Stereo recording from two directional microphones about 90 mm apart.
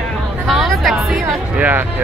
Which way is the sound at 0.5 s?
Centre (ahead or behind).